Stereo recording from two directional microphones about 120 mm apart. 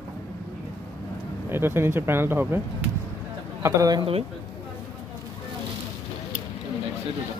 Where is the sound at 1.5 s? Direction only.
20° right (ahead or behind).